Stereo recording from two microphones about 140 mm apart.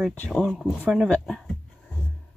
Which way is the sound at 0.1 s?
10° left (ahead or behind).